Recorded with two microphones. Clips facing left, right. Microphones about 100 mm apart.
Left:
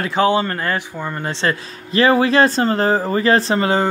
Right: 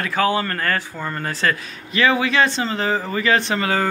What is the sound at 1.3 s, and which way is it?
Speech, 25° left (ahead or behind).